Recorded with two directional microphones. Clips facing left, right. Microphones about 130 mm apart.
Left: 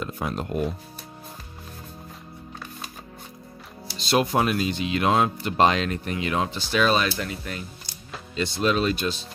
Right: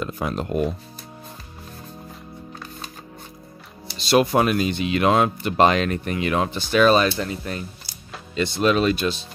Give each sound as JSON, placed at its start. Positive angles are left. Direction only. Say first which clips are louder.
{"t": 0.0, "sound": "music", "louder": "right 3 dB", "side_deg": -90}
{"t": 4.0, "sound": "speech", "louder": "right 4 dB", "side_deg": -75}
{"t": 7.1, "sound": "speech", "louder": "right 4 dB", "side_deg": -35}
{"t": 8.4, "sound": "speech", "louder": "right 4 dB", "side_deg": -70}